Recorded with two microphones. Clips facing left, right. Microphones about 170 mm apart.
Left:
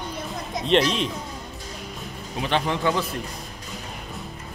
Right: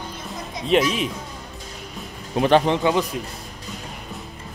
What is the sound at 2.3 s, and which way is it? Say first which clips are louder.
Speech: right 9 dB; 50° right (ahead or behind).